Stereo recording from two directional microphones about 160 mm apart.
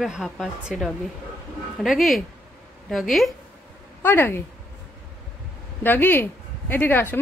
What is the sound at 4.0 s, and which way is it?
Speech, 15° left (ahead or behind).